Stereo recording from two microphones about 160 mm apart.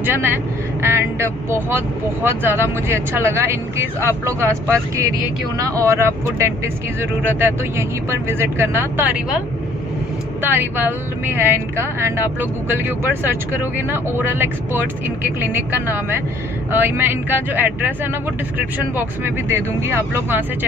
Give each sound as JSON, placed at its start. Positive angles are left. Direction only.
{"t": 0.0, "sound": "speech", "side_deg": -15}
{"t": 10.4, "sound": "speech", "side_deg": -10}
{"t": 18.9, "sound": "speech", "side_deg": -15}